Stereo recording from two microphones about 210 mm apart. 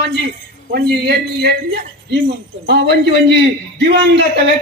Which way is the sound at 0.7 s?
50° right (ahead or behind).